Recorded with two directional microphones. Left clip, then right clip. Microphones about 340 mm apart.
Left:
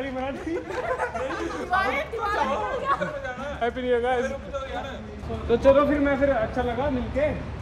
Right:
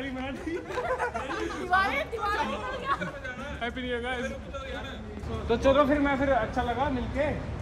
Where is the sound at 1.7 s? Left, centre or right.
Centre.